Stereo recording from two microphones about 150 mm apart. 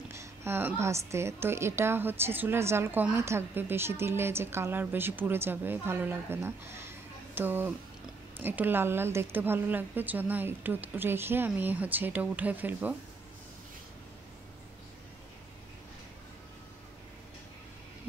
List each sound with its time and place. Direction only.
0.1 s a woman's voice: 20° right (ahead or behind)